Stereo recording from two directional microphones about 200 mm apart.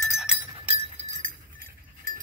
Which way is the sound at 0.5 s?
40° right (ahead or behind).